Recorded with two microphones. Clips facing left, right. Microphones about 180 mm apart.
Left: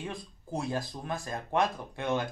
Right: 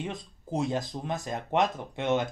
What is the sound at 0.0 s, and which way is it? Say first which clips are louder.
Speech: right 3 dB; 20° right (ahead or behind).